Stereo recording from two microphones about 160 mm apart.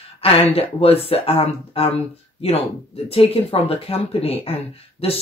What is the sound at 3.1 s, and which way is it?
Speech, 35° left (ahead or behind).